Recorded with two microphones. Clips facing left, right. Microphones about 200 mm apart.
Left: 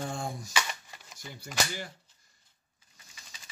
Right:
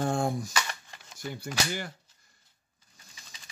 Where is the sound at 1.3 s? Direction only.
60° right (ahead or behind).